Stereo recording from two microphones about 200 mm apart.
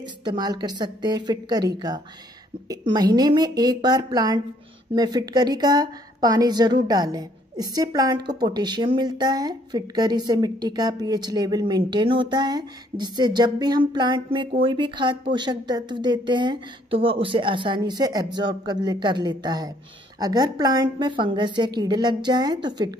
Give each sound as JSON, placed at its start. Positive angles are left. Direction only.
{"t": 0.0, "sound": "a woman's voice", "side_deg": -20}
{"t": 2.7, "sound": "a woman's voice", "side_deg": -20}